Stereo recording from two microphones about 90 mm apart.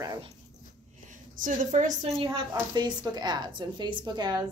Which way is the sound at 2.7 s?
50° right (ahead or behind).